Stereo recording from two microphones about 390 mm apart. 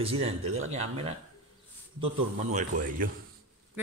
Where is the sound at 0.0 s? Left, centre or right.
Centre.